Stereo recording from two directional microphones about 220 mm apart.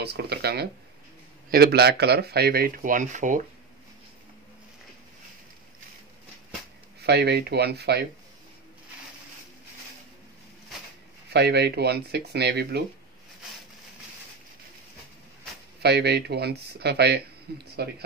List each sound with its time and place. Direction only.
0.0 s speech: 50° right (ahead or behind)
7.0 s speech: 50° right (ahead or behind)
11.3 s speech: 50° right (ahead or behind)
15.8 s speech: 50° right (ahead or behind)